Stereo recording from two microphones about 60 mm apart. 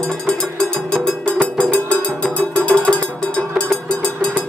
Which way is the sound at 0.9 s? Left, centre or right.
Centre.